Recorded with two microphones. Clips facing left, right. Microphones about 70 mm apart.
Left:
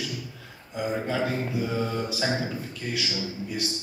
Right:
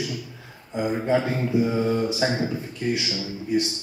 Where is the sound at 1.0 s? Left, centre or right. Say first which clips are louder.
Right 5 dB; right.